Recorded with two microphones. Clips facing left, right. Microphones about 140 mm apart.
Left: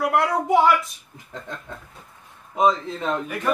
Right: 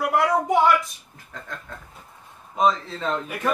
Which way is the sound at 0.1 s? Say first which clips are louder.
Right 1 dB; centre (ahead or behind).